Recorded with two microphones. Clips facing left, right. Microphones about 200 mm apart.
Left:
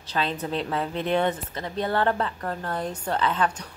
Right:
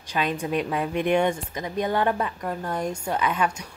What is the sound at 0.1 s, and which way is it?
A woman's voice, 15° right (ahead or behind).